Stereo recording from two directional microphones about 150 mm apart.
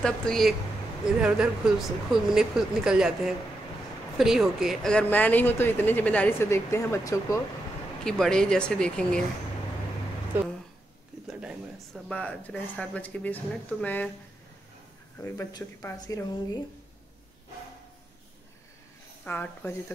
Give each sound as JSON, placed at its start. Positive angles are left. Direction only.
{"t": 0.0, "sound": "speech", "side_deg": 5}
{"t": 8.0, "sound": "speech", "side_deg": 5}
{"t": 11.2, "sound": "speech", "side_deg": -5}
{"t": 12.1, "sound": "speech", "side_deg": 10}
{"t": 15.1, "sound": "a woman's voice", "side_deg": 15}
{"t": 19.2, "sound": "speech", "side_deg": 10}